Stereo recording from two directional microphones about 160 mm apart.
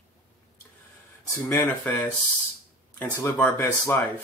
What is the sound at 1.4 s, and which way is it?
Speech, 10° left (ahead or behind).